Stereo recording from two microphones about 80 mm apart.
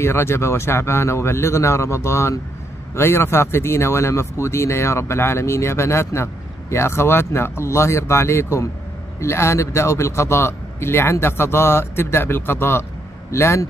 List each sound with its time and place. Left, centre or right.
0.0 s speech: left